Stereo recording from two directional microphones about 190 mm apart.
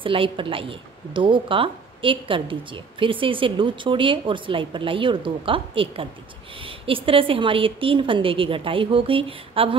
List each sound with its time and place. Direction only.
0.0 s a woman's voice: 25° right (ahead or behind)